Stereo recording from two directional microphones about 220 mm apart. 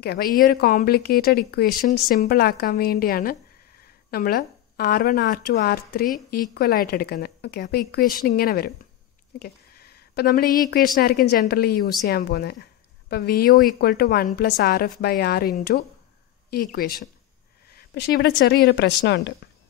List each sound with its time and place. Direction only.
0.0 s a woman's voice: 45° left (ahead or behind)